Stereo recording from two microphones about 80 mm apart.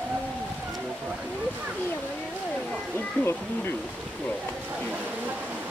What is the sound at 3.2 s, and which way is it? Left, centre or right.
Speech, centre.